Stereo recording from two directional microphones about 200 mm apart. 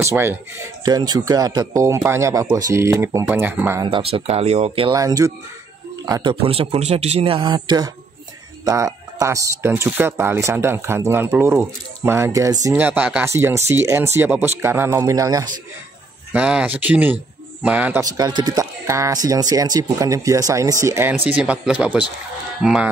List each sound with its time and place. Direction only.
0.0 s speech: 10° right (ahead or behind)
3.8 s a man's voice: 25° right (ahead or behind)
4.9 s a man's voice: 15° right (ahead or behind)
16.3 s speech: 5° right (ahead or behind)